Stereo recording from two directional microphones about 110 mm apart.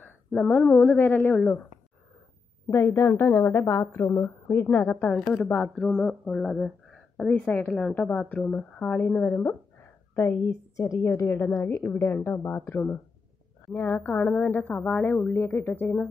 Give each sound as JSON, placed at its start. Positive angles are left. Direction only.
{"t": 0.0, "sound": "a woman's voice", "side_deg": 15}
{"t": 2.7, "sound": "a woman's voice", "side_deg": 25}
{"t": 5.9, "sound": "mantra", "side_deg": 5}
{"t": 7.2, "sound": "a woman's voice", "side_deg": 10}
{"t": 10.8, "sound": "a woman's voice", "side_deg": 30}